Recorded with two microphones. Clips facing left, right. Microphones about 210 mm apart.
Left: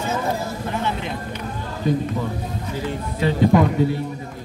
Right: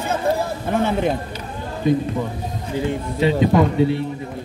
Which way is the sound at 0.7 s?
50° right (ahead or behind).